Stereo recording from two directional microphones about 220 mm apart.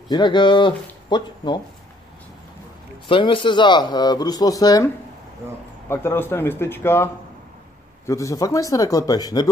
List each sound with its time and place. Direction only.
0.1 s a man's voice: 20° left (ahead or behind)
3.1 s a man's voice: 25° left (ahead or behind)
8.1 s a man's voice: 15° left (ahead or behind)